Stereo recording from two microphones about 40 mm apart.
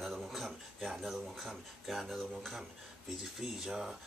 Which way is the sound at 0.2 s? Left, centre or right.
Centre.